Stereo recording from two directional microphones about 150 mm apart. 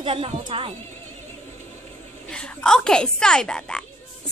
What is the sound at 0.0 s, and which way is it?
Speech, 35° right (ahead or behind).